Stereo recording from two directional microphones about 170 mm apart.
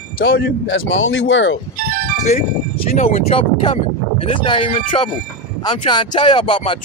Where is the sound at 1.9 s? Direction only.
55° right (ahead or behind).